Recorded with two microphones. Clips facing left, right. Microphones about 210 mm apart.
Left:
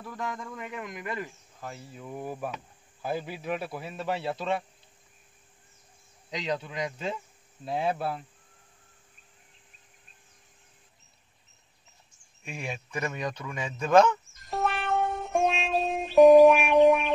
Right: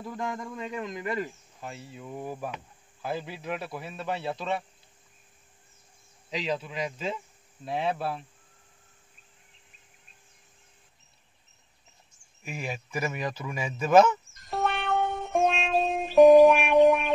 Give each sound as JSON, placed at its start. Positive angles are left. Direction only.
{"t": 0.0, "sound": "speech", "side_deg": -15}
{"t": 2.0, "sound": "a man's voice", "side_deg": 5}
{"t": 6.3, "sound": "speech", "side_deg": -5}
{"t": 12.4, "sound": "a sound", "side_deg": -5}